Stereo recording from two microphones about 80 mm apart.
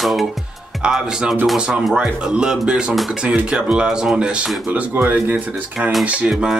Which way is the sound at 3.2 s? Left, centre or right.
Centre.